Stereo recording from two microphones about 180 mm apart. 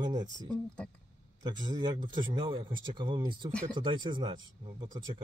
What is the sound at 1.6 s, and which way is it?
Speech, 25° right (ahead or behind).